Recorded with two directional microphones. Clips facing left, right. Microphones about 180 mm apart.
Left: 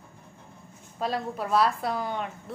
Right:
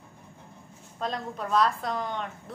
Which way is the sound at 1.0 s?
5° left (ahead or behind).